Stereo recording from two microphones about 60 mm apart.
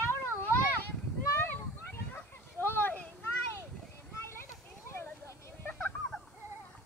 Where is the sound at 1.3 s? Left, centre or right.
Left.